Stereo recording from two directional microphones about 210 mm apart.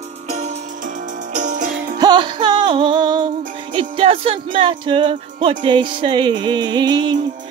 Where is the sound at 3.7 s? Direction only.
25° right (ahead or behind).